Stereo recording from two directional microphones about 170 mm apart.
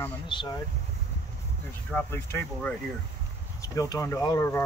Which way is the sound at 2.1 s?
15° left (ahead or behind).